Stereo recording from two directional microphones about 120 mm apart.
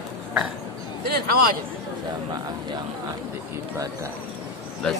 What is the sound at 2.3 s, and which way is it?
Speech, 35° right (ahead or behind).